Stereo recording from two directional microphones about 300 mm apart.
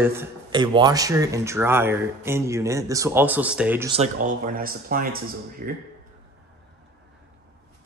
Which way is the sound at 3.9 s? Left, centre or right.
Right.